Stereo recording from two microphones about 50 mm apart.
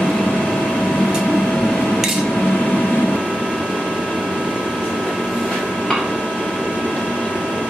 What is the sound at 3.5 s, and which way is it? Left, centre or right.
Vehicle, centre.